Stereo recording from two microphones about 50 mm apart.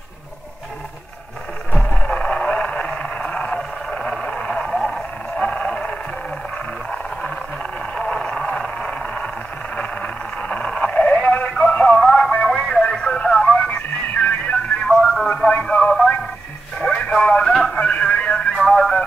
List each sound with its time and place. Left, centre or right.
1.7 s vehicle: left
3.9 s a sound: left
7.8 s vehicle: centre
9.8 s a sound: left
12.0 s music: centre; by 14.6 s left
14.9 s telephone: centre
15.3 s radio: centre
17.5 s a sound: centre
17.7 s music: left